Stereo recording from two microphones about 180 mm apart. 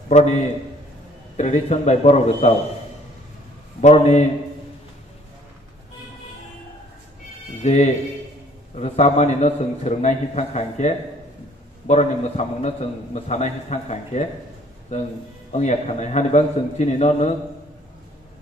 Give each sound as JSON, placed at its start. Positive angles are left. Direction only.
{"t": 0.1, "sound": "a man's voice", "side_deg": 40}
{"t": 3.8, "sound": "a man's voice", "side_deg": 40}
{"t": 7.6, "sound": "a man's voice", "side_deg": 40}
{"t": 15.5, "sound": "a man's voice", "side_deg": 40}